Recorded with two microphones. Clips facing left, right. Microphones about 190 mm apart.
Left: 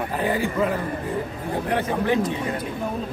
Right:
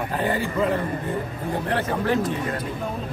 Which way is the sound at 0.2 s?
10° left (ahead or behind).